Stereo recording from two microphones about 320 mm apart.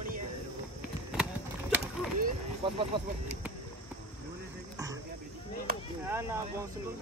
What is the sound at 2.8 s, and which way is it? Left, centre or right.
Speech, centre.